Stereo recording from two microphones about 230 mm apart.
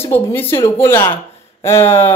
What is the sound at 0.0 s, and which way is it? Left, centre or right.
Speech, centre.